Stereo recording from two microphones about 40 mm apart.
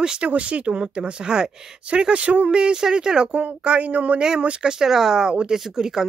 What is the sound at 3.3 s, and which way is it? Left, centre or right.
Speech, right.